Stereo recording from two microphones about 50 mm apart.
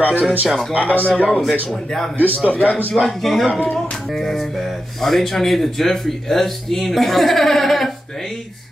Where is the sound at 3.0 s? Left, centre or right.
Centre.